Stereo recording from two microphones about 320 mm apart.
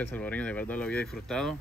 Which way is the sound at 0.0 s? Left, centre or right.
Centre.